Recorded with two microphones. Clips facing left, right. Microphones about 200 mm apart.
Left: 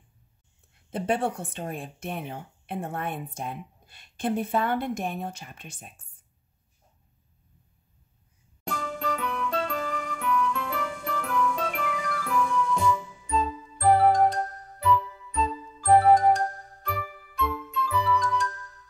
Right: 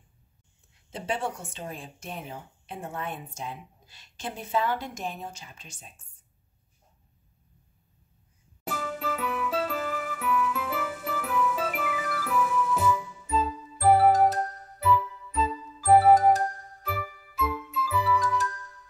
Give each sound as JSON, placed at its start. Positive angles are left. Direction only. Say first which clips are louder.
{"t": 0.8, "sound": "speech", "louder": "left 5 dB", "side_deg": 55}
{"t": 8.6, "sound": "music", "louder": "left 1 dB", "side_deg": -5}